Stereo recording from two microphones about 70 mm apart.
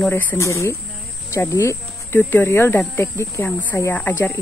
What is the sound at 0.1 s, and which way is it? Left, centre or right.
Speech, left.